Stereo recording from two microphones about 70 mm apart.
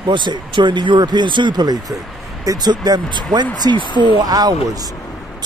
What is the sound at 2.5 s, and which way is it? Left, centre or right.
Speech, right.